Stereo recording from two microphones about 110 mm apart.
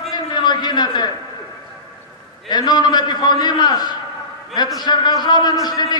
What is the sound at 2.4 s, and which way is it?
A man's voice, 40° left (ahead or behind).